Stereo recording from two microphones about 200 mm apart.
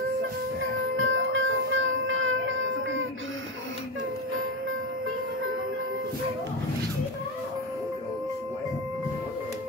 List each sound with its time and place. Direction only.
0.9 s music: 75° right (ahead or behind)